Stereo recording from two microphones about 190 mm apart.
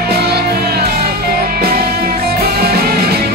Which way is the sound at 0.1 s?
55° right (ahead or behind).